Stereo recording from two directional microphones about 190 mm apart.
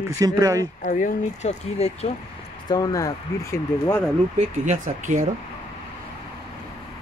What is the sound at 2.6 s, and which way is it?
Speech, 20° left (ahead or behind).